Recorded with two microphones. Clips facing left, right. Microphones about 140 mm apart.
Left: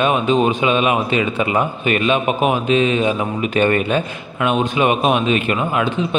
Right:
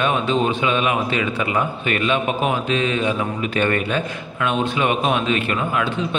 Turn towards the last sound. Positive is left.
turn(degrees=20)  # may be behind; listen again after turning